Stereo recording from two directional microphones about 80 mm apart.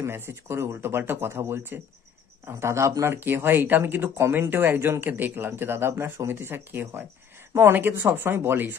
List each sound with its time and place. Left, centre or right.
0.0 s speech: right